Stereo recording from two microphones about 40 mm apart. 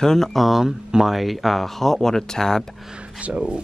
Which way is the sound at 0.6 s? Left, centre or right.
Centre.